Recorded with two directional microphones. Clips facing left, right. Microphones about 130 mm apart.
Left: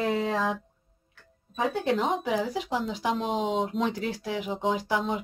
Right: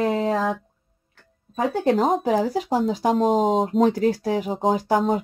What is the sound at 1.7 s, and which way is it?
Speech, 40° right (ahead or behind).